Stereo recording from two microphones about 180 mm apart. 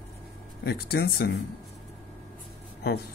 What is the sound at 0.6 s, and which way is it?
Speech, 60° left (ahead or behind).